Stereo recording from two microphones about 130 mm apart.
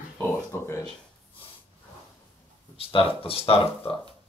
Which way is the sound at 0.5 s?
20° left (ahead or behind).